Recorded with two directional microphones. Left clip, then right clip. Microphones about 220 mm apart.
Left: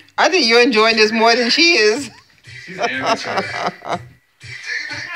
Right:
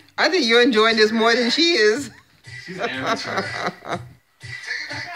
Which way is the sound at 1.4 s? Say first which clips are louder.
Left 4 dB; 25° right (ahead or behind).